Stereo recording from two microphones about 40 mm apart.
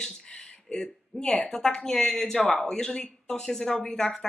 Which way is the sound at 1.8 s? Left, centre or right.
Centre.